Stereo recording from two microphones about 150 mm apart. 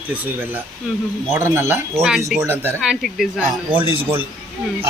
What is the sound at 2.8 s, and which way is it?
Speech, centre (ahead or behind).